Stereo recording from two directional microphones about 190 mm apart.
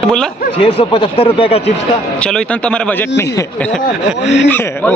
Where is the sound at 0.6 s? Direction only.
30° left (ahead or behind).